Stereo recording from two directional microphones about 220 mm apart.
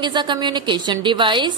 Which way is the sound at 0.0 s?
20° right (ahead or behind).